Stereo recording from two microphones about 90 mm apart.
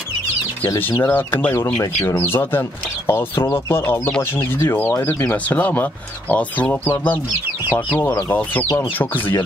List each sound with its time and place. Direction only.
0.7 s speech: 25° left (ahead or behind)